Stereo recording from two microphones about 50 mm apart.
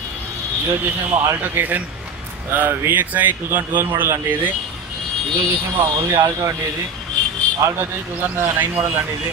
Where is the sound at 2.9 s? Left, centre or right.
Right.